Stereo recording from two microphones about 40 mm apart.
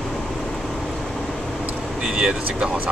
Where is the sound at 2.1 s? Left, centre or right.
Right.